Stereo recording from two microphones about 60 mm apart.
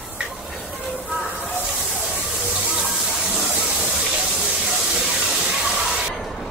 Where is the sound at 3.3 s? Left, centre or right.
Centre.